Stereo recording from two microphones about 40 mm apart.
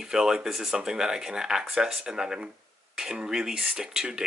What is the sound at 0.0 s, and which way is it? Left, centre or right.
Speech, centre.